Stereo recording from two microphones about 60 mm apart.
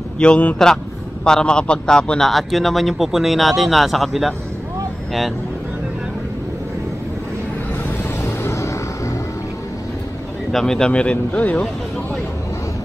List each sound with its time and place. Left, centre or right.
0.2 s a man's voice: centre
2.2 s speech: centre
8.3 s vehicle: left
10.5 s a man's voice: centre
10.9 s speech: centre